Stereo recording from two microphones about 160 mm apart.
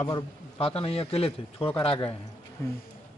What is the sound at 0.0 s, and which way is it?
Speech, 30° left (ahead or behind).